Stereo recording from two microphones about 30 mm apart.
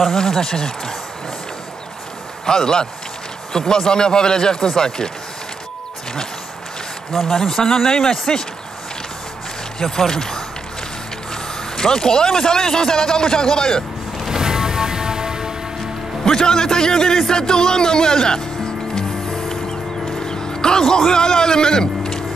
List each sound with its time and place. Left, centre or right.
0.1 s speech: centre
2.4 s a man's voice: left
7.1 s speech: centre
7.3 s speech: centre
9.8 s speech: centre
11.7 s a man's voice: centre
14.3 s music: centre
16.3 s a man's voice: left
20.2 s music: left
21.1 s speech: left